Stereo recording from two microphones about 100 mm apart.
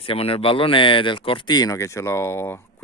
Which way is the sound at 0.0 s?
65° left (ahead or behind).